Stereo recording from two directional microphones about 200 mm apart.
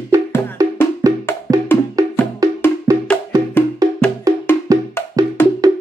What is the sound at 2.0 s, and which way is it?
Wood block, 15° right (ahead or behind).